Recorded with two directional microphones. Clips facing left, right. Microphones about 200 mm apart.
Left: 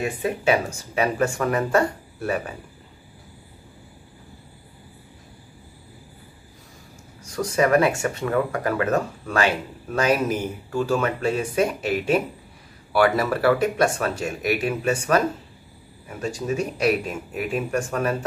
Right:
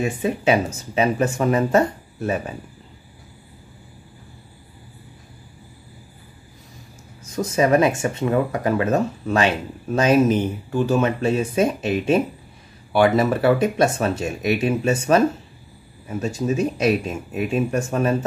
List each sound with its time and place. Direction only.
0.2 s speech: 20° right (ahead or behind)
7.2 s speech: 20° right (ahead or behind)